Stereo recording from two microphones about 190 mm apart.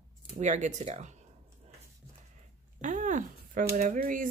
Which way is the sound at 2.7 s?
40° right (ahead or behind).